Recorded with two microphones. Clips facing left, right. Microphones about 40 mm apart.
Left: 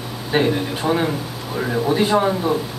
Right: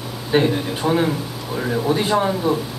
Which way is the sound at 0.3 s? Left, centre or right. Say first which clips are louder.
Right 1 dB; centre.